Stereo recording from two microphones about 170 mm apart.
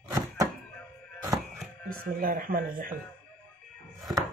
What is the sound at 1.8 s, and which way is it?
A woman's voice, 55° right (ahead or behind).